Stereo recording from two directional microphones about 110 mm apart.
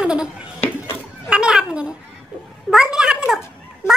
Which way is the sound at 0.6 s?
25° left (ahead or behind).